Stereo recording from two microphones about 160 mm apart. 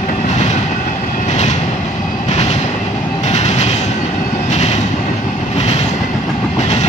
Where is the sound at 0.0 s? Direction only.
50° left (ahead or behind).